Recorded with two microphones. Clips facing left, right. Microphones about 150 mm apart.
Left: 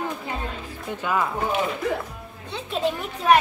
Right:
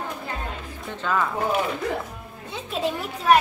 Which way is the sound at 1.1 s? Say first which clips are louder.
Even; 10° left (ahead or behind).